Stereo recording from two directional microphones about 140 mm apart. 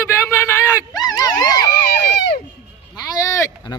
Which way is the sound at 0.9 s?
30° left (ahead or behind).